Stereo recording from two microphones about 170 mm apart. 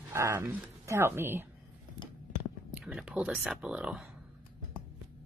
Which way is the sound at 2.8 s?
Centre (ahead or behind).